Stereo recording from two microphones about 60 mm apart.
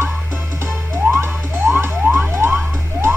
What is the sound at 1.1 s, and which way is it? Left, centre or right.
Frog, right.